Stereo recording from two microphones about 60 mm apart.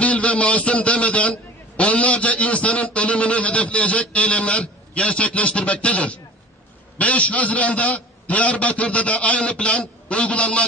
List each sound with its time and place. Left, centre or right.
0.0 s a man's voice: left